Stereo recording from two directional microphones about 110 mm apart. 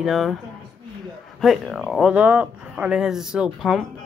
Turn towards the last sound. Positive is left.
turn(degrees=0)  # may be behind; listen again after turning